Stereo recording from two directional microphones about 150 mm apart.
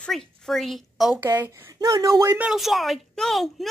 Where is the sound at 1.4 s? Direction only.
15° right (ahead or behind).